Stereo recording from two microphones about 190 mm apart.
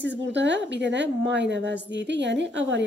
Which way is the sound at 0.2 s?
70° right (ahead or behind).